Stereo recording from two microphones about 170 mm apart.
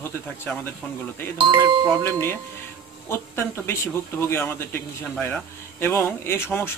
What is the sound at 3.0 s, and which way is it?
Speech, 15° left (ahead or behind).